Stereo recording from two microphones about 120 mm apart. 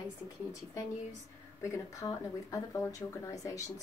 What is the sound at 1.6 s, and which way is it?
Speech, 25° left (ahead or behind).